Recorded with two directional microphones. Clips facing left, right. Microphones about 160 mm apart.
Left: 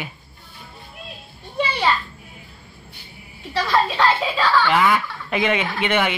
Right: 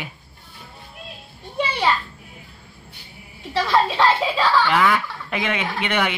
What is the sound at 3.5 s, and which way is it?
Speech, 30° right (ahead or behind).